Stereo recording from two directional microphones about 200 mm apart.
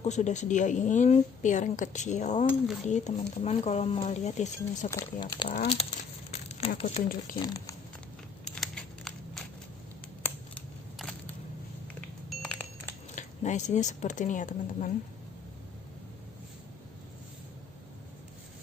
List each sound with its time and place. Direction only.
0.0 s speech: 35° left (ahead or behind)
4.9 s speech: 20° left (ahead or behind)
5.7 s speech: 30° left (ahead or behind)
8.5 s a sound: centre (ahead or behind)
10.2 s scissors: 5° left (ahead or behind)
12.3 s a sound: 5° left (ahead or behind)
13.1 s speech: 40° left (ahead or behind)